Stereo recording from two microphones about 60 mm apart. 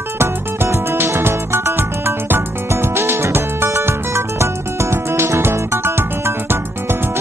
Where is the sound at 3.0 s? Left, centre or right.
Right.